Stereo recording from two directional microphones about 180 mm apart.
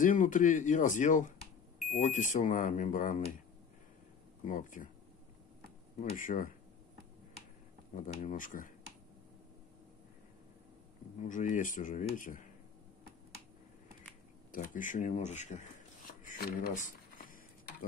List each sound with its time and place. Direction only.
0.0 s speech: 45° left (ahead or behind)
4.5 s speech: 45° left (ahead or behind)
5.9 s speech: 50° left (ahead or behind)
7.9 s speech: 45° left (ahead or behind)
11.2 s speech: 45° left (ahead or behind)
14.5 s speech: 45° left (ahead or behind)
16.1 s a sound: 55° left (ahead or behind)